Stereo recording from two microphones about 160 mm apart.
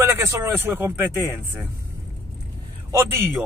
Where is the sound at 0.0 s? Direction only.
15° right (ahead or behind).